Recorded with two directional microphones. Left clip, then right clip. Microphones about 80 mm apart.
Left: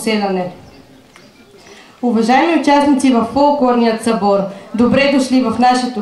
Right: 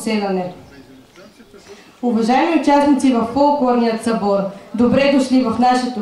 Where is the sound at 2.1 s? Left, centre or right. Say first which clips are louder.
Left 3 dB; left.